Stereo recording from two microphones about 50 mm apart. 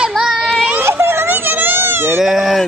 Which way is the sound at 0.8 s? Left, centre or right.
Right.